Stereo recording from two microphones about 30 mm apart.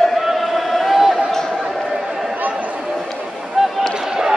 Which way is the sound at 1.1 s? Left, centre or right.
Centre.